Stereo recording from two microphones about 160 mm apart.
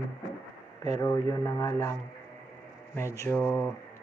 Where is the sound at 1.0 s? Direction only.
20° left (ahead or behind).